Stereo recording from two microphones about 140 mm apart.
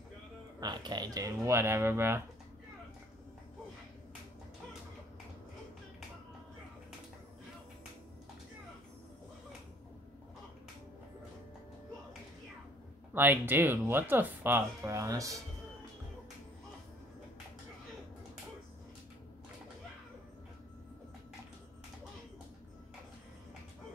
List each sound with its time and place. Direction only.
0.6 s speech: 30° right (ahead or behind)
13.1 s speech: 15° right (ahead or behind)